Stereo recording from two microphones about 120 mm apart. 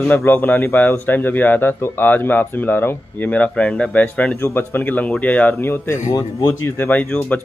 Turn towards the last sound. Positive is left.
turn(degrees=15)  # may be behind; listen again after turning